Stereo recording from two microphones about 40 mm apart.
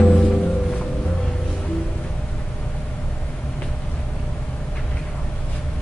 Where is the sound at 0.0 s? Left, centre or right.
Left.